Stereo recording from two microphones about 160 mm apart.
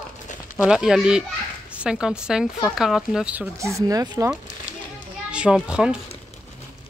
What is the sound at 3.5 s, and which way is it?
Speech, 20° right (ahead or behind).